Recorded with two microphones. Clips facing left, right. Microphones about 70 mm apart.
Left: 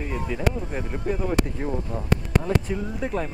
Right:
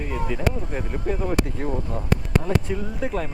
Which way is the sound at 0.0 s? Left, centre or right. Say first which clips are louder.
Right 1 dB; centre.